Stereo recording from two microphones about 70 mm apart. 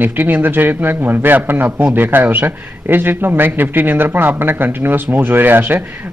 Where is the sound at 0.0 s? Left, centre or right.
Right.